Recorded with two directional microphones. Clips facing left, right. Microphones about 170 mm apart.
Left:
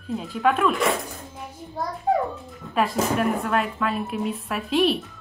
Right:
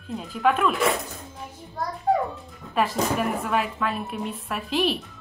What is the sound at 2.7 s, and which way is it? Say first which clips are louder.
A woman's voice: left 1 dB; centre (ahead or behind).